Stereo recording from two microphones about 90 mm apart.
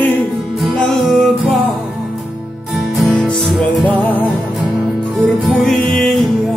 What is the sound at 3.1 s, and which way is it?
Music, 10° left (ahead or behind).